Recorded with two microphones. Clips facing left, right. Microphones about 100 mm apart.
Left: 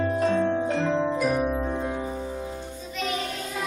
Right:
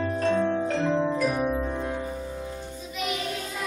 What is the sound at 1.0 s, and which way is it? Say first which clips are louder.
Music: left 1 dB; 15° left (ahead or behind).